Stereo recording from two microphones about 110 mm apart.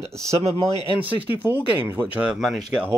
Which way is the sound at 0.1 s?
30° right (ahead or behind).